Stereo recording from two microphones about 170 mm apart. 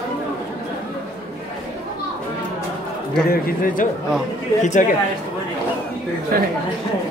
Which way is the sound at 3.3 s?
55° left (ahead or behind).